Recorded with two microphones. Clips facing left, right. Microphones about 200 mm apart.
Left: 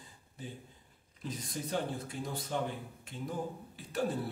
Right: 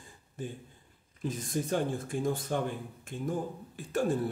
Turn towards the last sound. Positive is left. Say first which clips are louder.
# right 5 dB
turn(degrees=-50)  # may be behind; listen again after turning